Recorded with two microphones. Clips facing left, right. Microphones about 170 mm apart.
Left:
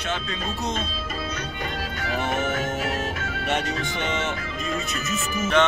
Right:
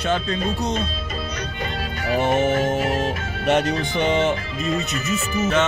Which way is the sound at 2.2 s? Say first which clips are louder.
Right 7 dB; 30° right (ahead or behind).